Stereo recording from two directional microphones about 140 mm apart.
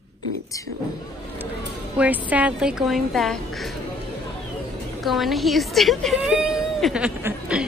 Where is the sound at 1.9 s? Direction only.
10° right (ahead or behind).